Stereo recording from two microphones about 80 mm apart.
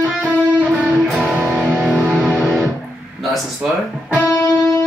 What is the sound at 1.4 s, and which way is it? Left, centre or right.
Music, centre.